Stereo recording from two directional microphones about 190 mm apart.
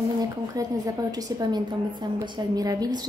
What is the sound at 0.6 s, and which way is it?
A woman's voice, 20° right (ahead or behind).